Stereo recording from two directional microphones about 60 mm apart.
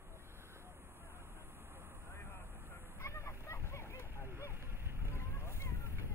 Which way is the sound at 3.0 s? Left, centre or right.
Left.